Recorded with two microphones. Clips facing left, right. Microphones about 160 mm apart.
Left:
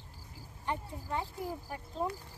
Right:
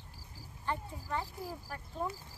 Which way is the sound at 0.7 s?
20° left (ahead or behind).